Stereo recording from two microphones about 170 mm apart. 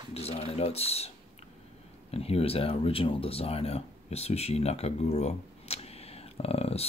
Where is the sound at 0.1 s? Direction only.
35° left (ahead or behind).